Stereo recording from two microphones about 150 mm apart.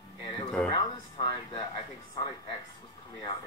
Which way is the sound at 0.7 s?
30° left (ahead or behind).